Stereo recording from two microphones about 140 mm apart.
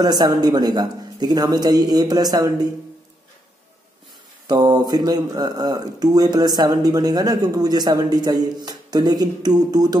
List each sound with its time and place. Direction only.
0.0 s speech: 30° right (ahead or behind)
4.5 s speech: 30° right (ahead or behind)